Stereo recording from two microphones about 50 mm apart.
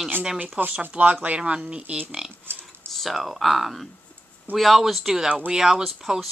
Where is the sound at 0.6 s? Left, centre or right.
Right.